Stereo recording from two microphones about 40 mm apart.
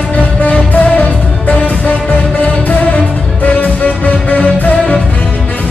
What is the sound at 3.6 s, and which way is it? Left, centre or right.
Music, left.